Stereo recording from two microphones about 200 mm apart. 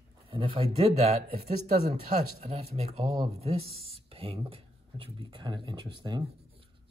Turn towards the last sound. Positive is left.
turn(degrees=-20)  # may be behind; listen again after turning